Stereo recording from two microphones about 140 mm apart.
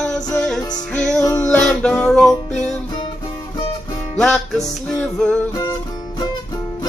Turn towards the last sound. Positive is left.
turn(degrees=5)  # may be behind; listen again after turning